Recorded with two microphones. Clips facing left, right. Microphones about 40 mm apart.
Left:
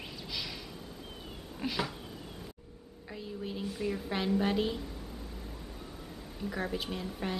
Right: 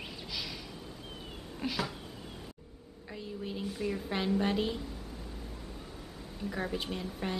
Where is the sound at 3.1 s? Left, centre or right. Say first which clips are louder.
Even; centre.